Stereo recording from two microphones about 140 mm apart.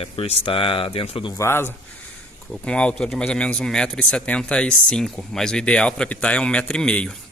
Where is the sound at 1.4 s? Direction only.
15° left (ahead or behind).